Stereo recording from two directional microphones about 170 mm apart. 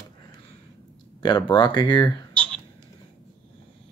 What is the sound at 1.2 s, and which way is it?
Speech, 25° left (ahead or behind).